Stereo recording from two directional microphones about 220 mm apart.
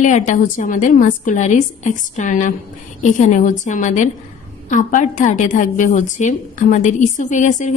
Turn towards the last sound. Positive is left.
turn(degrees=35)  # may be behind; listen again after turning